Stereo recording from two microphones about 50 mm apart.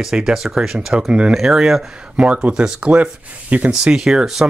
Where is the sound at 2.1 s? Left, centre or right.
Right.